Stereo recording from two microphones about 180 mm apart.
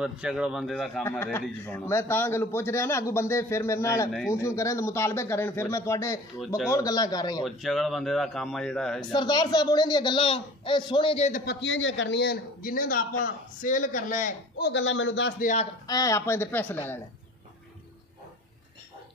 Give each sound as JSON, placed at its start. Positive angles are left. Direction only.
{"t": 0.0, "sound": "speech", "side_deg": -5}
{"t": 1.6, "sound": "a man's voice", "side_deg": 15}
{"t": 6.4, "sound": "speech", "side_deg": -5}
{"t": 6.7, "sound": "speech", "side_deg": 20}
{"t": 7.4, "sound": "speech", "side_deg": 0}
{"t": 9.1, "sound": "speech", "side_deg": 25}
{"t": 11.4, "sound": "a man's voice", "side_deg": 90}
{"t": 14.7, "sound": "a man's voice", "side_deg": 90}
{"t": 15.3, "sound": "a man's voice", "side_deg": 45}
{"t": 15.9, "sound": "a man's voice", "side_deg": 20}